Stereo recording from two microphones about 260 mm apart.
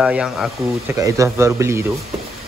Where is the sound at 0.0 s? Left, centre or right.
Centre.